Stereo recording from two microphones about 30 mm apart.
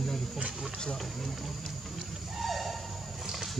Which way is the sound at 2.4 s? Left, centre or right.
Centre.